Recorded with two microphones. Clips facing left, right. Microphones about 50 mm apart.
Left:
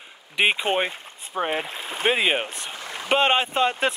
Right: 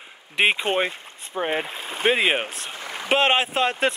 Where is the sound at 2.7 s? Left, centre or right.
Centre.